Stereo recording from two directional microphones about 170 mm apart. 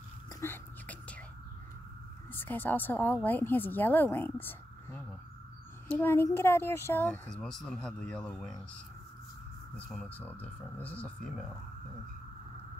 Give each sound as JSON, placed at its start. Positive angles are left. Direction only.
{"t": 0.3, "sound": "whispering", "side_deg": 15}
{"t": 2.3, "sound": "a woman's voice", "side_deg": 10}
{"t": 9.8, "sound": "speech", "side_deg": 5}